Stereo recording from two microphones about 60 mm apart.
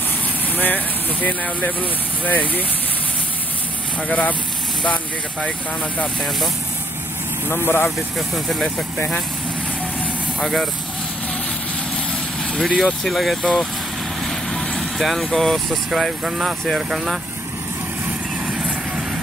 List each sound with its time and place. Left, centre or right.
0.6 s speech: left
4.1 s speech: left
7.4 s speech: left
10.4 s speech: centre
12.5 s speech: centre
14.2 s vehicle: centre
15.7 s speech: centre